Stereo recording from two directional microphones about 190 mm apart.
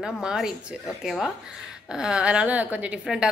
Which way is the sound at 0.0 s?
5° right (ahead or behind).